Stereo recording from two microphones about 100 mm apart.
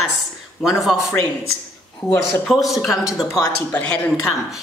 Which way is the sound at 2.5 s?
Centre (ahead or behind).